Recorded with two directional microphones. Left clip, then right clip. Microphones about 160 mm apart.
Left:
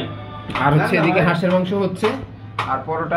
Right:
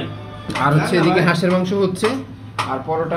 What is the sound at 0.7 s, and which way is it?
Speech, 5° right (ahead or behind).